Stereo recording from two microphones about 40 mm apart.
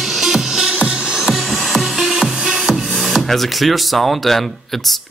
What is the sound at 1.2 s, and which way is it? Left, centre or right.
Music, centre.